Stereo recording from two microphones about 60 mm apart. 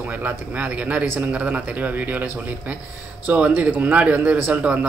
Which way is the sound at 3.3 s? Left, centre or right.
Right.